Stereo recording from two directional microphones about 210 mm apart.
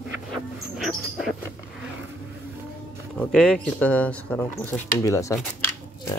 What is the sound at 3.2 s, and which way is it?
Speech, 5° left (ahead or behind).